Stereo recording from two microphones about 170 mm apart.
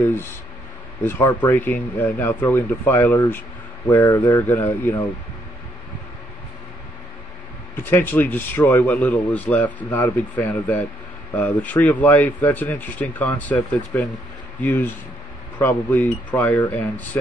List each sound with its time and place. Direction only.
1.0 s speech: 15° left (ahead or behind)
7.7 s speech: 10° left (ahead or behind)